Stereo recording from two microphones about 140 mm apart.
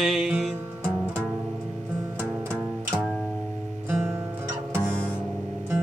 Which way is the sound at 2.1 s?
15° right (ahead or behind).